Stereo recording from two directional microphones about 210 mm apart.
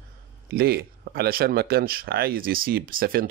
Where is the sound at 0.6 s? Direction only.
45° right (ahead or behind).